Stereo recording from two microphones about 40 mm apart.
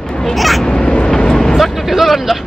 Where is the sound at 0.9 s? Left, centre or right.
Centre.